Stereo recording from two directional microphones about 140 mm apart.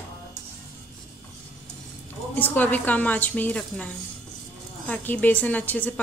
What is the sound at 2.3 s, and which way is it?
A woman's voice, 10° left (ahead or behind).